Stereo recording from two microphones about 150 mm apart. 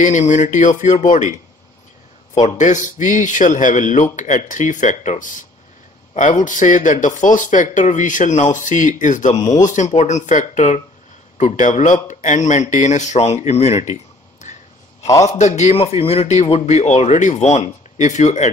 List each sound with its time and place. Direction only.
0.0 s speech: 55° left (ahead or behind)
2.4 s speech: 55° left (ahead or behind)
14.4 s a sound: 50° left (ahead or behind)
15.2 s speech: 50° left (ahead or behind)